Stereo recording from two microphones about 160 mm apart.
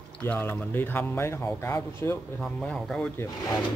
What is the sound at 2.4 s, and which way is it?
Speech, 5° left (ahead or behind).